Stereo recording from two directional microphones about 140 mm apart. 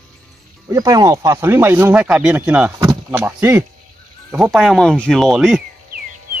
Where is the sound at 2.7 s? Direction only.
25° right (ahead or behind).